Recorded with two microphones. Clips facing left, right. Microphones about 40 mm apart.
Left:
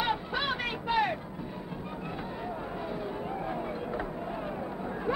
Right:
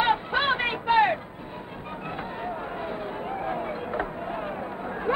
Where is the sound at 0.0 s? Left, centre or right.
Right.